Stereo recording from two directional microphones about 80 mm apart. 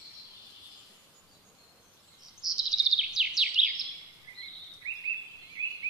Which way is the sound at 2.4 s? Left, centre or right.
Centre.